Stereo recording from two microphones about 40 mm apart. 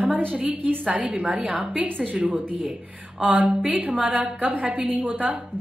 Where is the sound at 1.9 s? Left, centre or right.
Right.